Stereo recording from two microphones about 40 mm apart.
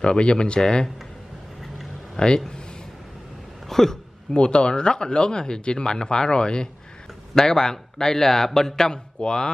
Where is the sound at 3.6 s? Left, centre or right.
Centre.